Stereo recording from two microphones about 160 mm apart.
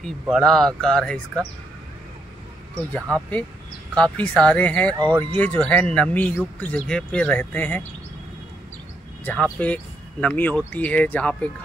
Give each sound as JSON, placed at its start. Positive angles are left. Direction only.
{"t": 0.0, "sound": "speech", "side_deg": 0}
{"t": 2.7, "sound": "speech", "side_deg": 10}
{"t": 9.2, "sound": "speech", "side_deg": 10}